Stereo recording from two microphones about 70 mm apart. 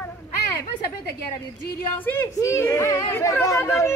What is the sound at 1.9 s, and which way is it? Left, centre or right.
Speech, left.